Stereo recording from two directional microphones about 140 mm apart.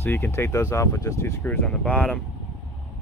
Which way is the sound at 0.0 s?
15° left (ahead or behind).